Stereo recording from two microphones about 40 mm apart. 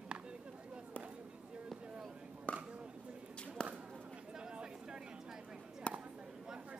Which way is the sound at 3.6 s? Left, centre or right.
Left.